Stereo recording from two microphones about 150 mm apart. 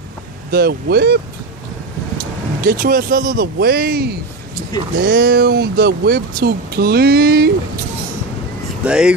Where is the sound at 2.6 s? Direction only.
75° right (ahead or behind); by 4.2 s 90° right.